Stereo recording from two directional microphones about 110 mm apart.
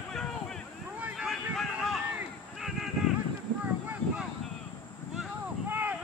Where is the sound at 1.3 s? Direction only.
Centre (ahead or behind).